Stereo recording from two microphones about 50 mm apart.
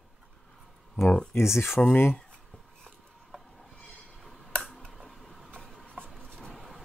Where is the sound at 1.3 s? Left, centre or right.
Left.